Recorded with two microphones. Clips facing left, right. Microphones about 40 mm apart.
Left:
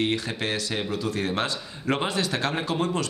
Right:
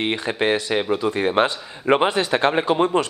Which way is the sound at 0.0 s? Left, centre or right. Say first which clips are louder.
Right 5 dB; right.